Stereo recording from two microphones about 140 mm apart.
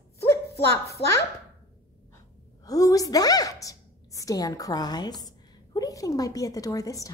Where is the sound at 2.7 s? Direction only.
25° left (ahead or behind).